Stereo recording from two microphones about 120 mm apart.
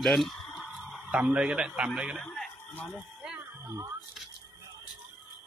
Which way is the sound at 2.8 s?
5° right (ahead or behind).